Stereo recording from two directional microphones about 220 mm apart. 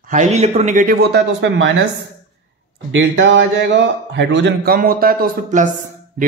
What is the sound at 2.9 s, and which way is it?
A man's voice, 55° right (ahead or behind).